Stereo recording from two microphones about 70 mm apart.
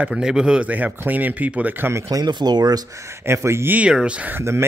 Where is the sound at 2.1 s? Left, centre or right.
Right.